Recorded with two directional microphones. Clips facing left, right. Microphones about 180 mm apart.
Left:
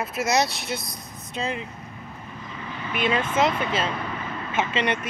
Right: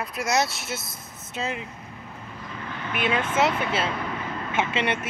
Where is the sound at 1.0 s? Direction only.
15° left (ahead or behind).